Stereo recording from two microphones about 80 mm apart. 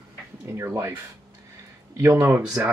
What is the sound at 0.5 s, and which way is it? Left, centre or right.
Speech, right.